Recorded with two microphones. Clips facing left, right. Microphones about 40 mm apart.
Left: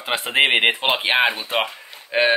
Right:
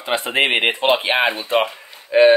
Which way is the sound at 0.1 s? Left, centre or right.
Centre.